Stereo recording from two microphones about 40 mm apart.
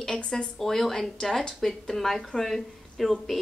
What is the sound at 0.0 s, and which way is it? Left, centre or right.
Speech, centre.